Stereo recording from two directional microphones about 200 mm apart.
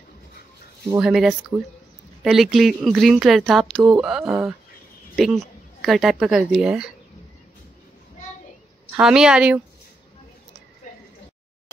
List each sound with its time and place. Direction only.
0.9 s a woman's voice: centre (ahead or behind)
8.9 s speech: 5° right (ahead or behind)